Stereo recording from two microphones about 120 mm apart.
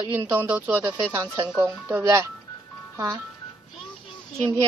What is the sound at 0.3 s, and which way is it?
A woman's voice, 15° right (ahead or behind).